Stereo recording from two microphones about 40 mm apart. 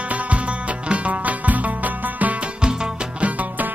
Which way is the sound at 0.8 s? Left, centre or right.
Right.